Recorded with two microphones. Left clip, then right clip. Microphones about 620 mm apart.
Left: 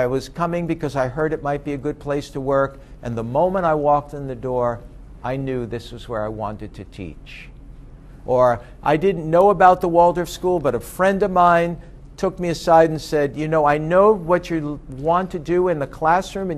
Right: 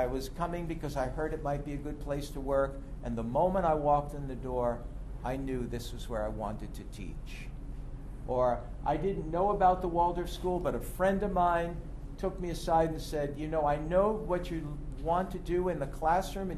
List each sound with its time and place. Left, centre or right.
0.0 s a man's voice: left
8.3 s a man's voice: left